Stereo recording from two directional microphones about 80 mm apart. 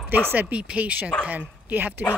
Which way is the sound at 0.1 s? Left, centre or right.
Right.